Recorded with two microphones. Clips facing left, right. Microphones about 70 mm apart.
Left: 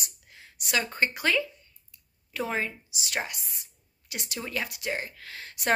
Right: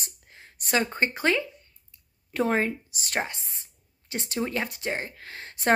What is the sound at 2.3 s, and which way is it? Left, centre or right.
Speech, right.